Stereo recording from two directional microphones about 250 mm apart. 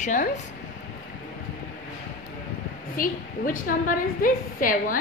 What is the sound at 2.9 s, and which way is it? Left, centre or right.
A woman's voice, left.